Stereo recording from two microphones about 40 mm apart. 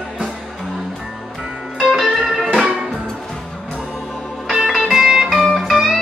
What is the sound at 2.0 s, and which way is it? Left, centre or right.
Music, centre.